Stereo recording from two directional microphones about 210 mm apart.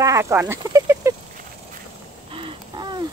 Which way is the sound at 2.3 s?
25° right (ahead or behind).